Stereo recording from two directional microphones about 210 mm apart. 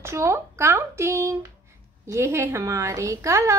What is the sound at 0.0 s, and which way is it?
Speech, 15° right (ahead or behind).